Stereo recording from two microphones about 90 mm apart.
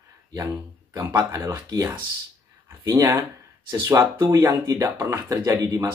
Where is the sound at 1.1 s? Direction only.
45° right (ahead or behind).